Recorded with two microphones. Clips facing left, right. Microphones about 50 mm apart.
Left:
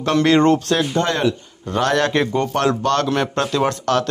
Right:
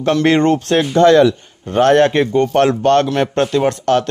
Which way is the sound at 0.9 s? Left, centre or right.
Right.